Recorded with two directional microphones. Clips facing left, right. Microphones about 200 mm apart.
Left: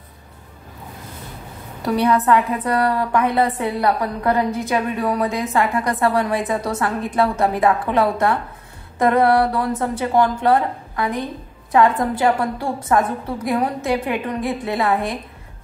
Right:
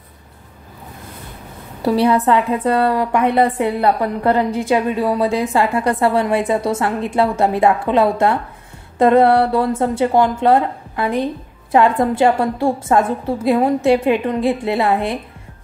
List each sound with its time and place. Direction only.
1.9 s a woman's voice: 30° right (ahead or behind)